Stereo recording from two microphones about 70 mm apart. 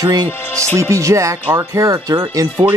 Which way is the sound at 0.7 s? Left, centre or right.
Right.